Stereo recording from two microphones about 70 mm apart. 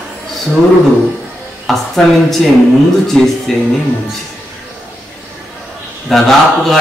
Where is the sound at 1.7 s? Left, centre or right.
Centre.